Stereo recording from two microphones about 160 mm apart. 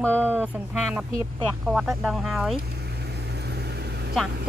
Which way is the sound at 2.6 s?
90° right.